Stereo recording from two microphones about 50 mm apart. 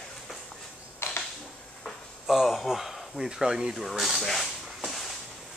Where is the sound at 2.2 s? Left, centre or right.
Centre.